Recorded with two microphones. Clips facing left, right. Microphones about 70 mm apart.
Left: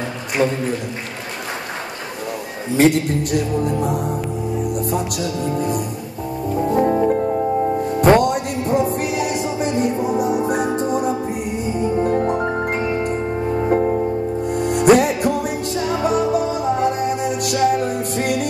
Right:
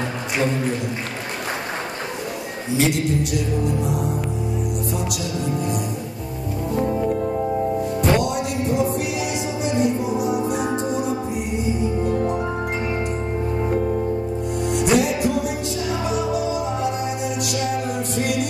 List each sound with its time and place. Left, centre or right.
2.8 s music: left